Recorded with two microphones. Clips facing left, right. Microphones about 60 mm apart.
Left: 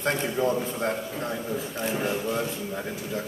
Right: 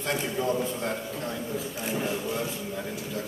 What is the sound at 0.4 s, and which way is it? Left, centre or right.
A man's voice, centre.